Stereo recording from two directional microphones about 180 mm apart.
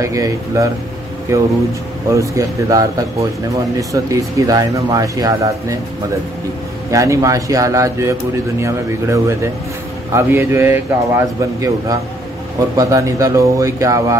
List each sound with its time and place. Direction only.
0.0 s a man's voice: 15° right (ahead or behind)
6.9 s a man's voice: 15° right (ahead or behind)